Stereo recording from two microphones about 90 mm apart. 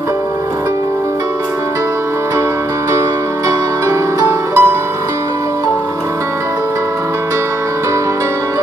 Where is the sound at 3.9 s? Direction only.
30° right (ahead or behind).